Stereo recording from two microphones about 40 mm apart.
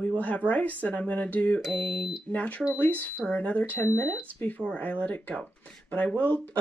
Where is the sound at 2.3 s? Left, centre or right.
Left.